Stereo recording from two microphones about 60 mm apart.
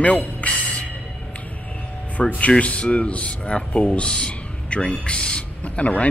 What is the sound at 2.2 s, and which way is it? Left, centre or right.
Speech, left.